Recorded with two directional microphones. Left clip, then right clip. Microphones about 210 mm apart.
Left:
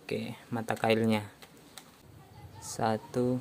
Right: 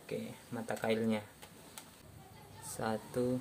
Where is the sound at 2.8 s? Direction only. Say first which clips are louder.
Left 6 dB; 30° left (ahead or behind).